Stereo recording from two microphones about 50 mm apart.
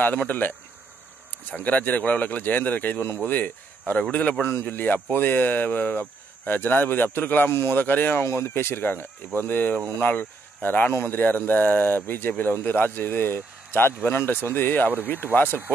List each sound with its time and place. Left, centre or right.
0.0 s speech: left
1.6 s a man's voice: left
8.2 s speech: left